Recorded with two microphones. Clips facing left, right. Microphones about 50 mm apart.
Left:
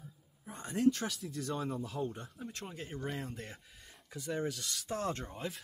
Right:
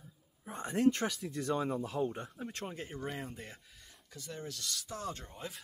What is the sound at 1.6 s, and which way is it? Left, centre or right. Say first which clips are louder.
Speech: right 3 dB; right.